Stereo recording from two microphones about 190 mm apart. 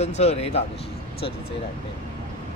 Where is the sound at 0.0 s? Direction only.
35° left (ahead or behind).